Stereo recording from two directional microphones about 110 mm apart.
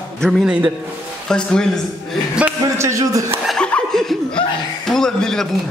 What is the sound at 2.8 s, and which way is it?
Speech, 30° right (ahead or behind).